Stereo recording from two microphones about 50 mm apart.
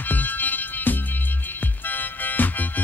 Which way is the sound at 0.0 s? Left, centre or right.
Left.